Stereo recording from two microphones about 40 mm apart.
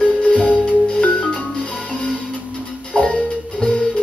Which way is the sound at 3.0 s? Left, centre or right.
Left.